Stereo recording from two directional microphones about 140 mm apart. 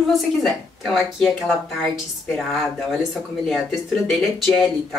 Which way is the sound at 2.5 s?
Centre (ahead or behind).